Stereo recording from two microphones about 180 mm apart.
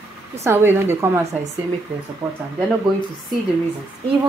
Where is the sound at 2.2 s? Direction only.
10° right (ahead or behind).